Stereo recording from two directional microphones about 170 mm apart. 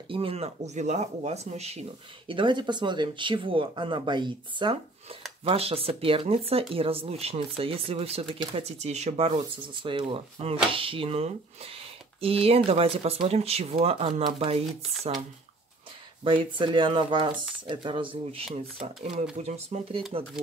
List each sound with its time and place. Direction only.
0.1 s speech: 35° right (ahead or behind)
16.3 s speech: 30° right (ahead or behind)